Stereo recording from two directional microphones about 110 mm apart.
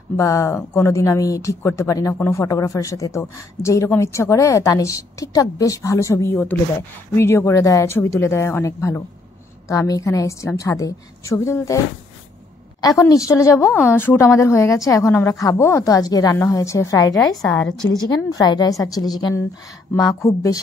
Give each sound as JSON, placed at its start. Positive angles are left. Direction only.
{"t": 0.2, "sound": "speech", "side_deg": 25}
{"t": 13.1, "sound": "a woman's voice", "side_deg": 30}